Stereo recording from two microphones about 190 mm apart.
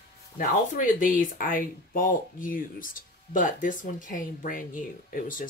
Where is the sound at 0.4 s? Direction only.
45° left (ahead or behind).